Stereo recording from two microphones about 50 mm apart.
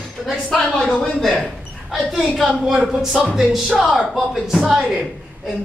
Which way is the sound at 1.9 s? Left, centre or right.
Centre.